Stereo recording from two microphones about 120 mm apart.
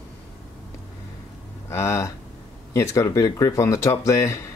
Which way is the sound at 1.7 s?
25° left (ahead or behind).